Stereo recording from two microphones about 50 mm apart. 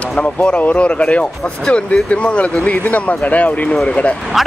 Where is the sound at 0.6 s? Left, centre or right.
Left.